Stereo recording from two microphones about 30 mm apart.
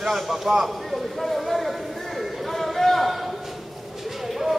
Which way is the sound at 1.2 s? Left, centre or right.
Centre.